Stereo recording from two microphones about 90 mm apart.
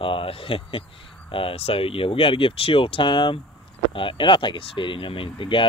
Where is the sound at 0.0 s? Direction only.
85° left.